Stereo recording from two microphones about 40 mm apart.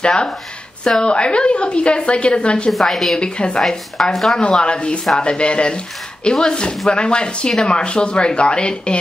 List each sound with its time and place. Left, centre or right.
0.0 s a woman's voice: left
2.8 s a woman's voice: centre
3.2 s a woman's voice: left
3.6 s a woman's voice: centre
4.4 s a woman's voice: left